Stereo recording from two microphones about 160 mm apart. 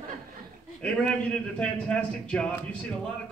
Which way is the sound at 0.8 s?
5° left (ahead or behind).